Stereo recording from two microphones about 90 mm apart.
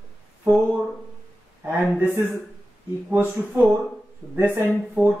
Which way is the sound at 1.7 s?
15° right (ahead or behind).